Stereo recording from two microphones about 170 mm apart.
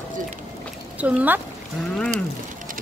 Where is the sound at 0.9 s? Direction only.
10° right (ahead or behind).